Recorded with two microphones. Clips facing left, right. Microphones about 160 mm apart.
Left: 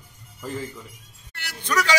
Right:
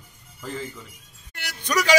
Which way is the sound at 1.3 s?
15° right (ahead or behind).